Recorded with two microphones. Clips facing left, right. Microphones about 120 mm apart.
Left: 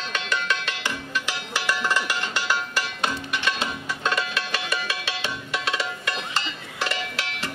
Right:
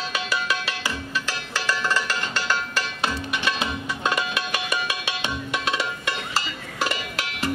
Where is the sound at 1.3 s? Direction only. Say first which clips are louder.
Even; 15° left (ahead or behind).